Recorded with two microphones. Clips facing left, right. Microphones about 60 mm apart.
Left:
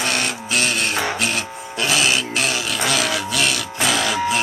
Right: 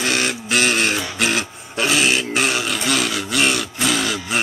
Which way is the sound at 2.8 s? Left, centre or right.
Left.